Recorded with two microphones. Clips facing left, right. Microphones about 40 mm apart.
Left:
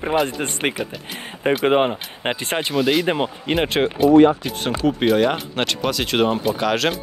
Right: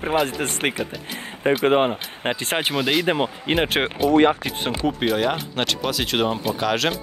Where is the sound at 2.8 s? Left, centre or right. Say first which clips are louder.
Left 3 dB; centre.